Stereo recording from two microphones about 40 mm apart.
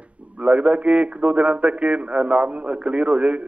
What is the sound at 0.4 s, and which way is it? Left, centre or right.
A man's voice, right.